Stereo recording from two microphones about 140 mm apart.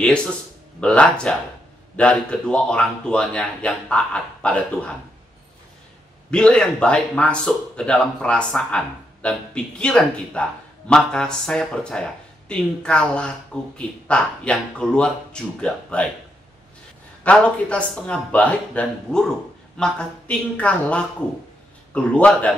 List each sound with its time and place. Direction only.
0.0 s speech: 5° left (ahead or behind)
6.3 s speech: 5° left (ahead or behind)
17.2 s speech: 10° left (ahead or behind)